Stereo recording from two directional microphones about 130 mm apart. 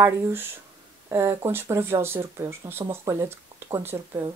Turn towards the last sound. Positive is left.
turn(degrees=-20)  # may be behind; listen again after turning